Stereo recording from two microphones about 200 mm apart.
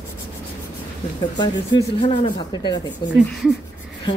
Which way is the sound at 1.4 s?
20° left (ahead or behind).